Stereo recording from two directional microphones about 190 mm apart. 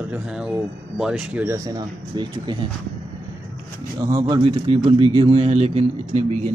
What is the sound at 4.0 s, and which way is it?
A man's voice, 20° right (ahead or behind).